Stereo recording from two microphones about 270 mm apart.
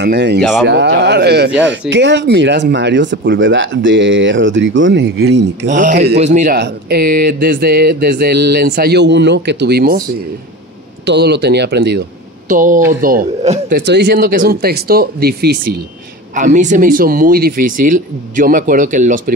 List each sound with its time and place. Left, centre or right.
0.0 s speech: right
0.4 s speech: centre
0.7 s speech: right
5.7 s speech: right
11.1 s speech: right